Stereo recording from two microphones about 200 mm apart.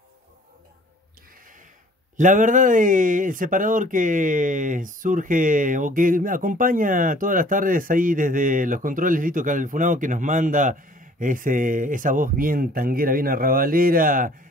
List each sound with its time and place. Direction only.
2.1 s speech: 40° right (ahead or behind)